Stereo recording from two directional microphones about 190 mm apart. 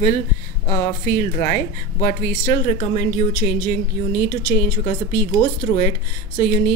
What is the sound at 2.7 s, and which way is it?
A woman's voice, 35° left (ahead or behind).